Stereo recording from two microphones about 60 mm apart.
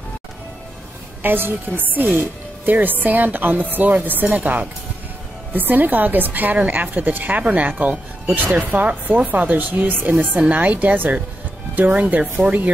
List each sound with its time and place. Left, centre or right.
1.2 s a woman's voice: right